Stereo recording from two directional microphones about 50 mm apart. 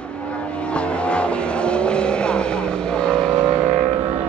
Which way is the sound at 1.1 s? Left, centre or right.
Left.